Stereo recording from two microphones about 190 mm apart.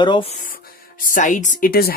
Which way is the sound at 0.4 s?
50° left (ahead or behind).